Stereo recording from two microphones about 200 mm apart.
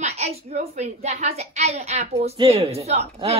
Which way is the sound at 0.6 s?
30° right (ahead or behind).